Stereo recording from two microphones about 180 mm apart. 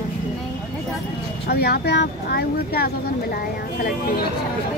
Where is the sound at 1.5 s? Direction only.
60° left (ahead or behind).